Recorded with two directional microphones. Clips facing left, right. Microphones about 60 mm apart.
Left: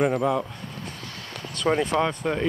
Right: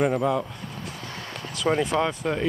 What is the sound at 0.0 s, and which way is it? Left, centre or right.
Speech, centre.